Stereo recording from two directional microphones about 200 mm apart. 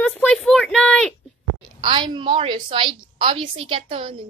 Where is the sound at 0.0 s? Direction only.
5° left (ahead or behind).